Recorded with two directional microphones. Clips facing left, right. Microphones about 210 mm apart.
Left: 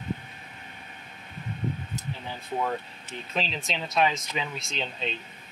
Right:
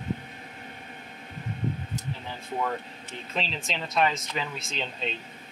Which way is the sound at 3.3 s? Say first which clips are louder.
Left 1 dB; centre (ahead or behind).